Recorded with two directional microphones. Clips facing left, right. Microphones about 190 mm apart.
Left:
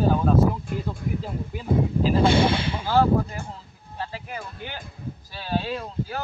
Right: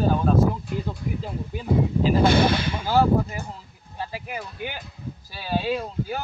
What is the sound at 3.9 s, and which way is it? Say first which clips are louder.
Speech: right 1 dB; 10° right (ahead or behind).